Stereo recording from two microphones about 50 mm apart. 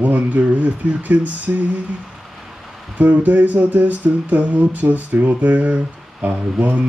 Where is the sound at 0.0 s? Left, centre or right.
Right.